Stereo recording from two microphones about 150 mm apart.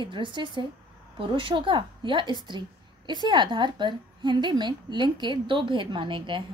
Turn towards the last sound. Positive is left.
turn(degrees=-30)  # may be behind; listen again after turning